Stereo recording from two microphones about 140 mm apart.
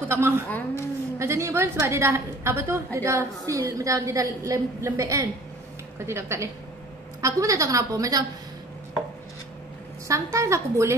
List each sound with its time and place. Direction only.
0.1 s a woman's voice: 15° right (ahead or behind)
0.5 s a woman's voice: 15° left (ahead or behind)
1.2 s a woman's voice: 20° right (ahead or behind)
10.0 s a woman's voice: 20° right (ahead or behind)